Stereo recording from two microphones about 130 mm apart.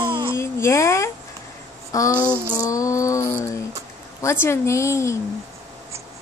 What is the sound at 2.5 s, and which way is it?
Speech, 25° left (ahead or behind).